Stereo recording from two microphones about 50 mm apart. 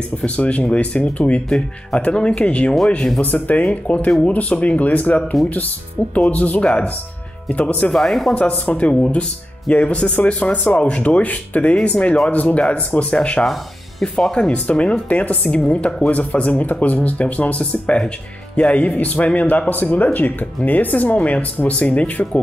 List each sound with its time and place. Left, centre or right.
0.4 s speech: left
7.9 s speech: centre
8.4 s speech: left
13.5 s music: centre
14.1 s speech: centre
14.5 s speech: left